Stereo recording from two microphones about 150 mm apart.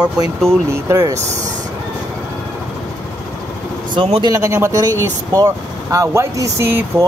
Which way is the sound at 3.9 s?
35° right (ahead or behind).